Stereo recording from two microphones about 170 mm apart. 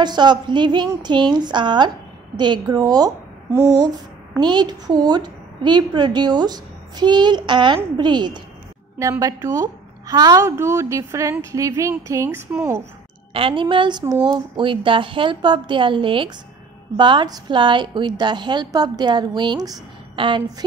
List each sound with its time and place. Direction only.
0.0 s a woman's voice: 25° right (ahead or behind)
4.4 s a woman's voice: 25° right (ahead or behind)
8.9 s a woman's voice: 15° right (ahead or behind)
13.3 s a woman's voice: 30° right (ahead or behind)